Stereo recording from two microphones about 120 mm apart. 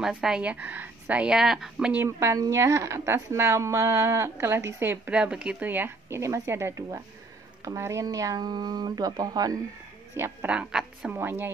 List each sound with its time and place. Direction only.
0.0 s speech: 5° right (ahead or behind)
2.0 s speech: 25° right (ahead or behind)
5.1 s speech: 10° right (ahead or behind); by 9.6 s 30° right (ahead or behind)
10.1 s speech: 20° right (ahead or behind)
10.5 s a woman's voice: 5° right (ahead or behind)
11.1 s speech: 15° right (ahead or behind)